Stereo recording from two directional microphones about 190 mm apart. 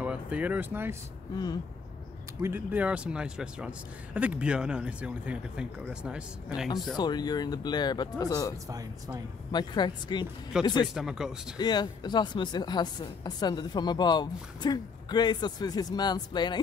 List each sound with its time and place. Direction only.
0.0 s speech: 5° right (ahead or behind)
1.3 s speech: 20° left (ahead or behind)
2.4 s speech: 10° right (ahead or behind)
7.0 s speech: 20° left (ahead or behind)
8.6 s speech: 20° right (ahead or behind)
9.5 s speech: 25° left (ahead or behind)
11.0 s speech: 5° right (ahead or behind)
11.5 s speech: 20° left (ahead or behind)